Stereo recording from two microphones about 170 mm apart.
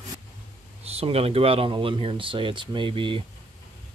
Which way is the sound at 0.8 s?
35° right (ahead or behind).